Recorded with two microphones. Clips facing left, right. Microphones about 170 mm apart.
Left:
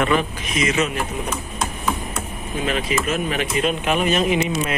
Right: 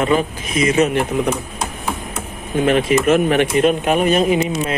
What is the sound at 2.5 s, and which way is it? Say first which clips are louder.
Speech: right 8 dB; 55° right (ahead or behind).